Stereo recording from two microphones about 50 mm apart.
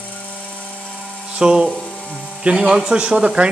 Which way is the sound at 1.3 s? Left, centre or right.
Centre.